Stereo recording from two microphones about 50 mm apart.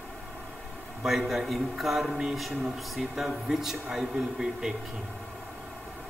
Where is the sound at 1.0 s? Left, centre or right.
Centre.